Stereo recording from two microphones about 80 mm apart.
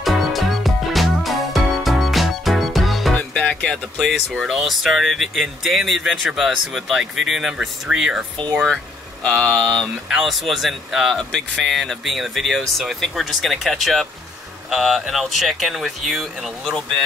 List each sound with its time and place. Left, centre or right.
0.0 s music: centre
3.2 s music: centre
4.1 s speech: centre
8.4 s speech: right
9.2 s speech: centre
10.0 s speech: centre
11.1 s speech: centre